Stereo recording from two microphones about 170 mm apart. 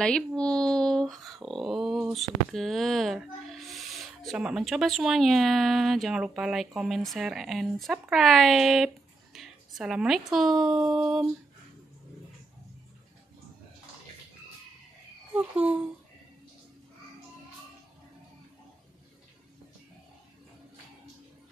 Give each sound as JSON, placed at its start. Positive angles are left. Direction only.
{"t": 0.0, "sound": "speech", "side_deg": 5}
{"t": 15.3, "sound": "speech", "side_deg": -10}